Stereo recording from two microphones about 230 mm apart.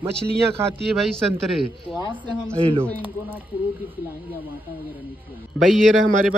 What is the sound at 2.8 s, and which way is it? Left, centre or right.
Speech, centre.